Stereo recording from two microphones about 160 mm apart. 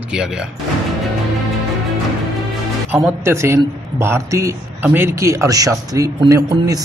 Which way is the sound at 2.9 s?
15° right (ahead or behind).